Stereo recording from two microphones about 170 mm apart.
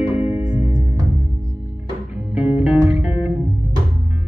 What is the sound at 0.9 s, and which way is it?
Music, 20° right (ahead or behind).